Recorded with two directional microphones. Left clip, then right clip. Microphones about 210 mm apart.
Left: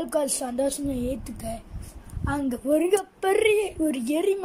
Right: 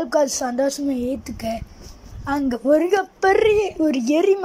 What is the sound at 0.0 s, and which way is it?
A woman's voice, centre (ahead or behind).